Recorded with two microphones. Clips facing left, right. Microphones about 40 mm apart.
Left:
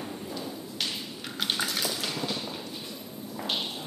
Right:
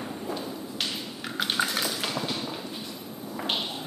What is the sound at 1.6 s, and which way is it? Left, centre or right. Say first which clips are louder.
Tap: right 3 dB; centre.